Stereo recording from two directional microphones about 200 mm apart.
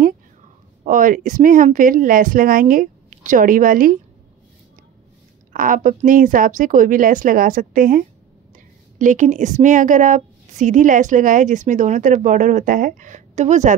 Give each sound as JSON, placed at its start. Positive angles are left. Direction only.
{"t": 0.8, "sound": "speech", "side_deg": -45}
{"t": 5.5, "sound": "a woman's voice", "side_deg": -40}